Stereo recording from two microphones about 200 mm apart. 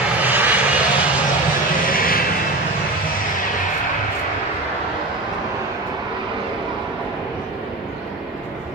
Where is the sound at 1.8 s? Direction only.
45° left (ahead or behind).